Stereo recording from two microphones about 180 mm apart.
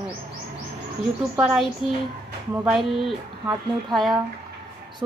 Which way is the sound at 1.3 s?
5° right (ahead or behind).